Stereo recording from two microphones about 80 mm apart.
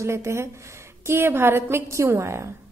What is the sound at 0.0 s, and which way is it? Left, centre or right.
A woman's voice, right.